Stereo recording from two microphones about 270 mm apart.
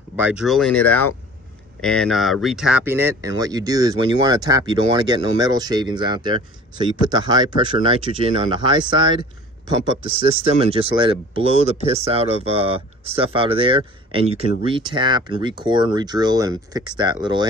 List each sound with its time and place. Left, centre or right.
0.1 s speech: centre
10.4 s speech: right